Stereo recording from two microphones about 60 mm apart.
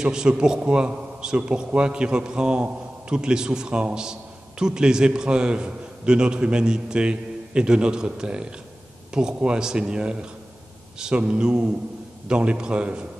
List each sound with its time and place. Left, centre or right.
0.0 s a man's voice: centre